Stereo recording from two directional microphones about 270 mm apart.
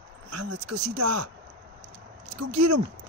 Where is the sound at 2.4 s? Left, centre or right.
Right.